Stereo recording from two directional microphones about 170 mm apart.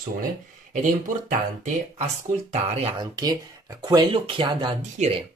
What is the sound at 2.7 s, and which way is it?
Speech, 35° right (ahead or behind).